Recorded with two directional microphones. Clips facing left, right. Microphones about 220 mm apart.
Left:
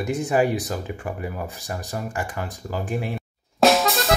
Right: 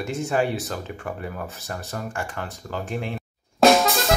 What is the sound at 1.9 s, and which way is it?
Speech, 10° left (ahead or behind).